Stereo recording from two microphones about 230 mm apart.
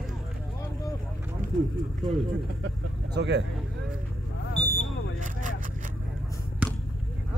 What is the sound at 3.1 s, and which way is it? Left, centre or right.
Speech, right.